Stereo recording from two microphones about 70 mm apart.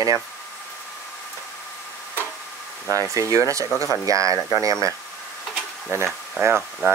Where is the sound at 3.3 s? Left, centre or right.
Right.